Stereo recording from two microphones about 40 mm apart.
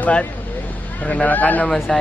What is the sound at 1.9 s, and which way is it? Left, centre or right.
Speech, centre.